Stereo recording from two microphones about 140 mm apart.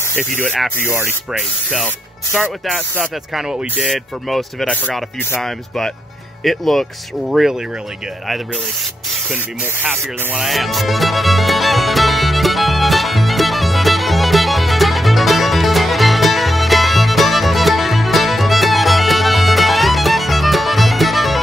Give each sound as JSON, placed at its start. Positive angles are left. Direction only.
{"t": 0.0, "sound": "spray", "side_deg": 15}
{"t": 0.4, "sound": "speech", "side_deg": 5}
{"t": 2.6, "sound": "speech", "side_deg": -5}
{"t": 9.3, "sound": "spray", "side_deg": -10}